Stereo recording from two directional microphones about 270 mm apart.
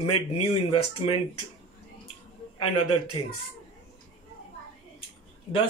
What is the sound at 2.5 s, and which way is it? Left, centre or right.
Speech, left.